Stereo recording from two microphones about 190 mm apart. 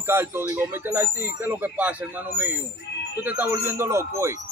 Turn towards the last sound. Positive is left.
turn(degrees=-15)  # may be behind; listen again after turning